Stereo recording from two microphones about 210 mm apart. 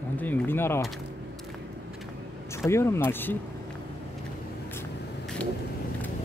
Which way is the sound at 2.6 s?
15° left (ahead or behind).